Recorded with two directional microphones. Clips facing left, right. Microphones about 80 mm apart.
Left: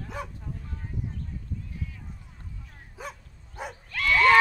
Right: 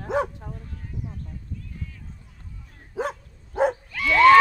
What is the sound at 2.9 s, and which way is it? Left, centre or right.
Dog, right.